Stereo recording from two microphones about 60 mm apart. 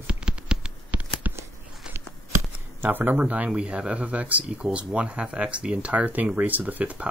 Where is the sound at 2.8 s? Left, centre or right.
Right.